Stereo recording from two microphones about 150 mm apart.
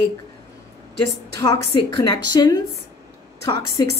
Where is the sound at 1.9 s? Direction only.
25° left (ahead or behind).